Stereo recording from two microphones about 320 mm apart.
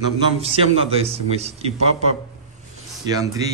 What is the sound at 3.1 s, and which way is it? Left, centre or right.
Speech, centre.